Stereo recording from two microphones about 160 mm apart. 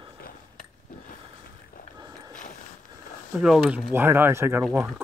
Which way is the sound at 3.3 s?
5° right (ahead or behind).